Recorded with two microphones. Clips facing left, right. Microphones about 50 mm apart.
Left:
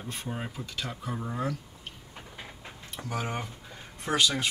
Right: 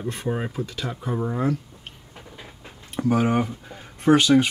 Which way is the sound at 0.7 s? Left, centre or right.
Right.